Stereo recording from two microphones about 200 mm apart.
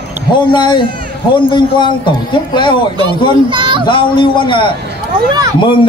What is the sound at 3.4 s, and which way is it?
Speech, 25° right (ahead or behind).